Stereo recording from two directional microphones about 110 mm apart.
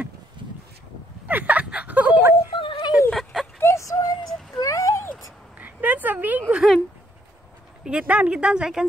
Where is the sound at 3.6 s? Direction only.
25° left (ahead or behind).